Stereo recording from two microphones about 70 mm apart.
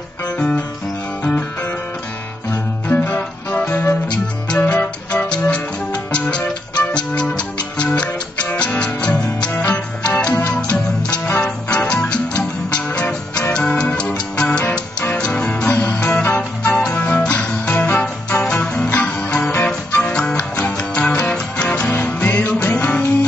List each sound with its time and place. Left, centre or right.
1.2 s guitar: left
2.9 s music: left
9.5 s music: left
10.0 s music: centre
11.4 s music: centre